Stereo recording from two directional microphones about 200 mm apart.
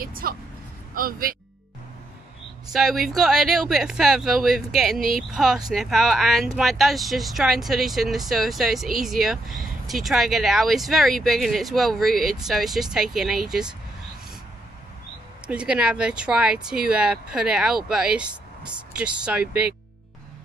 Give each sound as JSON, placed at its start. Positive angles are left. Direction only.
{"t": 0.0, "sound": "speech", "side_deg": -45}
{"t": 2.7, "sound": "speech", "side_deg": 0}
{"t": 15.4, "sound": "speech", "side_deg": -5}